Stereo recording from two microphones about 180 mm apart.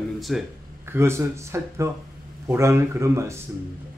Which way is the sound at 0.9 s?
15° right (ahead or behind).